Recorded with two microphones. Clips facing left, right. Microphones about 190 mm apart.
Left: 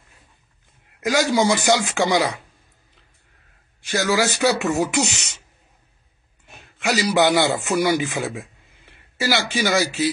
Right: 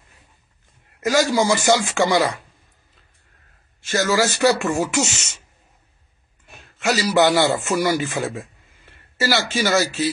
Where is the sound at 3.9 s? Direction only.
15° left (ahead or behind).